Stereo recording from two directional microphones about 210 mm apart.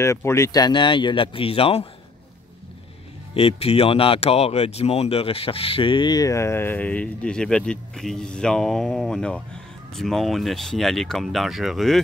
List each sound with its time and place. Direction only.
0.0 s speech: 15° left (ahead or behind)
3.3 s speech: 30° left (ahead or behind); by 12.0 s centre (ahead or behind)